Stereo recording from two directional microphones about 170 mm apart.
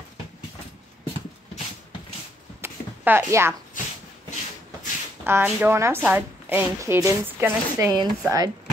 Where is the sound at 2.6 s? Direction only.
10° right (ahead or behind).